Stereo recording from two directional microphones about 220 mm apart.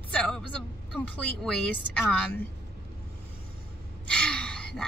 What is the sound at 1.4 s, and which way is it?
Speech, 5° left (ahead or behind).